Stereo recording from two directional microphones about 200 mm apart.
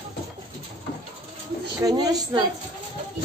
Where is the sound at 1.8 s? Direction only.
20° right (ahead or behind).